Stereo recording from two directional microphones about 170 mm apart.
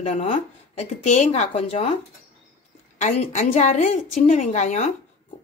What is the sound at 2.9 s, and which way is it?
Speech, 45° left (ahead or behind).